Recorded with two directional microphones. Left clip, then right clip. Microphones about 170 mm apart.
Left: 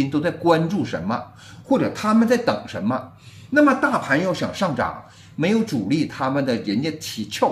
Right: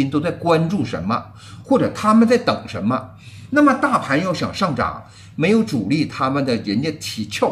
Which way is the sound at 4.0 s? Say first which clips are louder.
Right 1 dB; 15° right (ahead or behind).